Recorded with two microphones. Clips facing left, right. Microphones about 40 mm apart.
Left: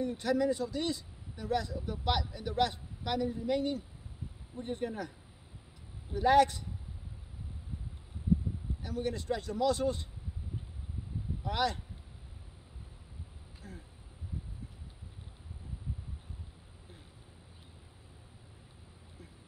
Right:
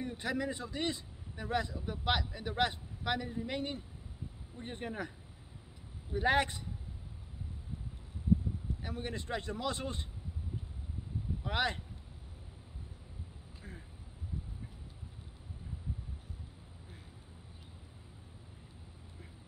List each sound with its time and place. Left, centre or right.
0.0 s speech: right
6.1 s speech: right
8.8 s speech: right
11.4 s speech: right
13.6 s a sound: right